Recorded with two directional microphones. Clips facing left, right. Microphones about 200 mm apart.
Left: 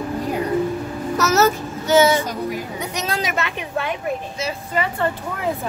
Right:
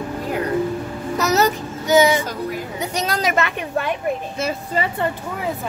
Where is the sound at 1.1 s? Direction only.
15° right (ahead or behind).